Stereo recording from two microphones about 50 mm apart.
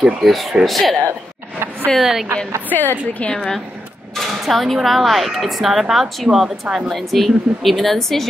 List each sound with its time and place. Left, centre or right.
0.0 s speech: centre
2.0 s speech: centre
2.7 s a woman's voice: left
3.3 s speech: centre